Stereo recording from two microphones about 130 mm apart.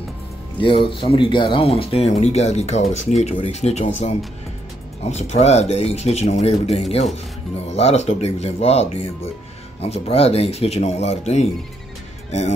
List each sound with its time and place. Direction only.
0.6 s speech: 40° left (ahead or behind); by 4.1 s 60° left (ahead or behind)
5.1 s speech: 60° left (ahead or behind)